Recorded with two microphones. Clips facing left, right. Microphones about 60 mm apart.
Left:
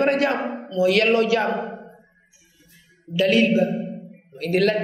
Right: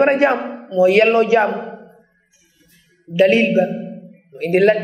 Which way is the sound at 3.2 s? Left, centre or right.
Right.